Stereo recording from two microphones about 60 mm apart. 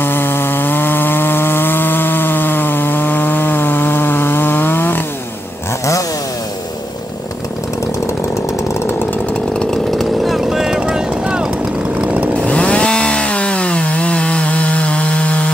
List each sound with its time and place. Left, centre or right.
0.0 s chainsaw: left
9.8 s vehicle: centre
12.0 s chainsaw: right
12.4 s chainsaw: centre